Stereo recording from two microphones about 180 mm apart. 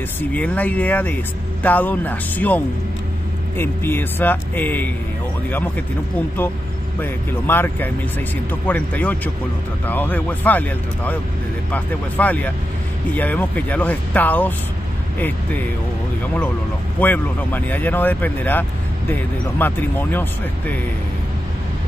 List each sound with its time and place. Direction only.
0.2 s speech: 10° left (ahead or behind)
7.0 s speech: 10° left (ahead or behind)
17.0 s speech: 10° left (ahead or behind)